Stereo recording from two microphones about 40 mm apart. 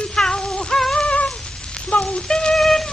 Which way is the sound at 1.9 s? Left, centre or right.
Left.